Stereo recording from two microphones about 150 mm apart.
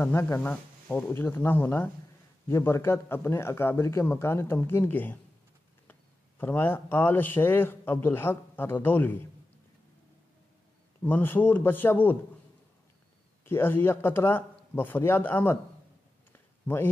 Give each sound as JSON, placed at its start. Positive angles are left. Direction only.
{"t": 0.0, "sound": "a man's voice", "side_deg": 15}
{"t": 11.0, "sound": "a man's voice", "side_deg": 10}
{"t": 13.5, "sound": "a man's voice", "side_deg": 15}
{"t": 16.6, "sound": "speech", "side_deg": 15}